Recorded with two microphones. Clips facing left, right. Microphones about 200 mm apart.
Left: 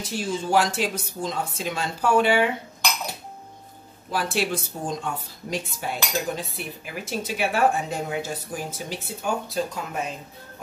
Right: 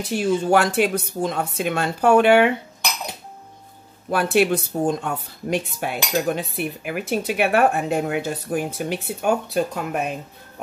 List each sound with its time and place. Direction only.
0.0 s speech: 65° right (ahead or behind)
4.1 s speech: 60° right (ahead or behind)